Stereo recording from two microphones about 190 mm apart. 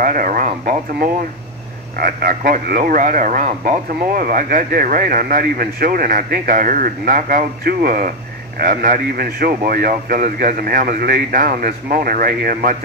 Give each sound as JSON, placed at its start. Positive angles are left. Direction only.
{"t": 0.0, "sound": "speech", "side_deg": -45}